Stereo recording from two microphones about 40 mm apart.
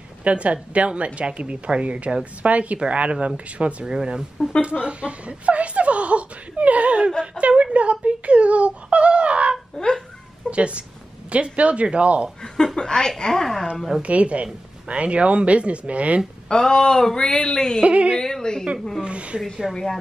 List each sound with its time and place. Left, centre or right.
0.2 s speech: right
3.8 s speech: centre
9.8 s fowl: centre
10.5 s speech: right
12.7 s speech: centre
14.0 s speech: right
16.4 s speech: centre
17.8 s speech: right
18.1 s speech: centre
19.0 s speech: right
19.7 s speech: centre